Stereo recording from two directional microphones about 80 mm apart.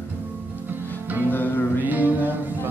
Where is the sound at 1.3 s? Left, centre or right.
Left.